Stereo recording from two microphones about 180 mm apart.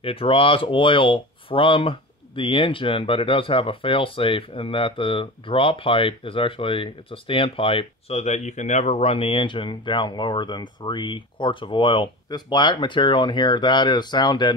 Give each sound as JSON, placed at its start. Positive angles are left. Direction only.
{"t": 0.0, "sound": "speech", "side_deg": 30}